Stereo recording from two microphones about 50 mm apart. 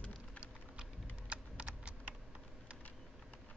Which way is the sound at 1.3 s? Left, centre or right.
Right.